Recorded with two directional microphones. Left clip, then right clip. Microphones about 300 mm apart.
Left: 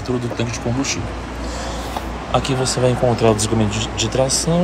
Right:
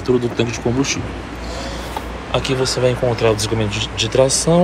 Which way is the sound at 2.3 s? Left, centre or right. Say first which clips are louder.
Right 1 dB; centre.